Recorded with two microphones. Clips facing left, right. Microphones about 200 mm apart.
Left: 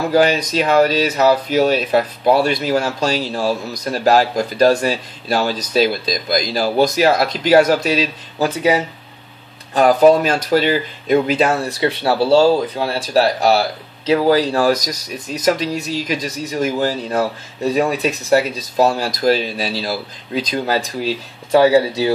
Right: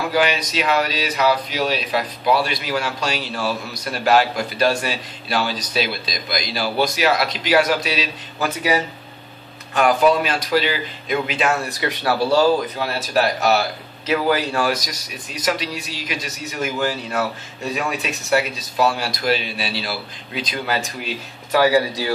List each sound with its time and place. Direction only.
0.1 s speech: 45° left (ahead or behind)
8.4 s speech: 25° left (ahead or behind)
9.8 s speech: 35° left (ahead or behind)